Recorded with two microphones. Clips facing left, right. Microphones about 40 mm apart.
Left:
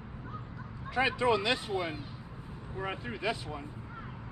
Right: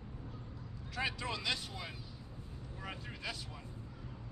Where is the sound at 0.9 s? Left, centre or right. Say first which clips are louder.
Left 11 dB; left.